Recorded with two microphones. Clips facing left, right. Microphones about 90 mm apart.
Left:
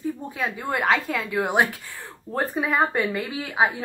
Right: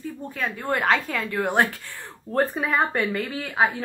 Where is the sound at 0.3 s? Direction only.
10° left (ahead or behind).